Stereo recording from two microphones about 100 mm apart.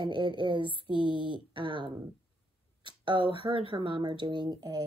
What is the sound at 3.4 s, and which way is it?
Speech, 65° right (ahead or behind).